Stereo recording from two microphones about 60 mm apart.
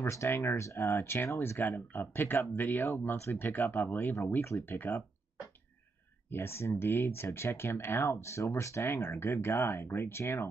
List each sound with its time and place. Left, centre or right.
0.0 s speech: left
1.6 s speech: left
4.3 s speech: left
4.7 s speech: left
6.3 s speech: left